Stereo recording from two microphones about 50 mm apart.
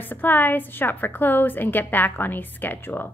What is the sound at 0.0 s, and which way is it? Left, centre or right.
A woman's voice, left.